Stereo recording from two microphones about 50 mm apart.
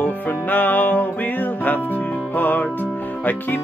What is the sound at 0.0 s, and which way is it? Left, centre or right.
Music, left.